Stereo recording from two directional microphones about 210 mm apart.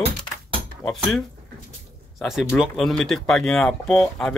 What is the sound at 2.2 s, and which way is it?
Speech, centre (ahead or behind).